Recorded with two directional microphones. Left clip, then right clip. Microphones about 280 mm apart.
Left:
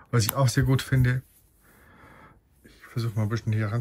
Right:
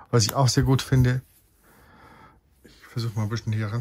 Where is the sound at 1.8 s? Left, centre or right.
Centre.